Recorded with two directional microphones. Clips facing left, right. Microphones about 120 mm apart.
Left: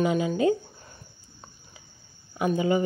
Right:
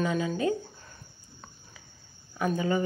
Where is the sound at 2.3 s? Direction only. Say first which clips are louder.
Left 4 dB; 15° left (ahead or behind).